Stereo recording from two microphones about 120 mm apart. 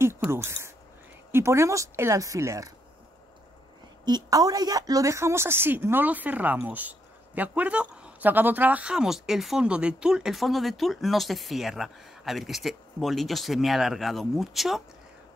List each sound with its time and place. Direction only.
0.3 s speech: 20° right (ahead or behind)
4.0 s a woman's voice: 35° right (ahead or behind); by 14.8 s centre (ahead or behind)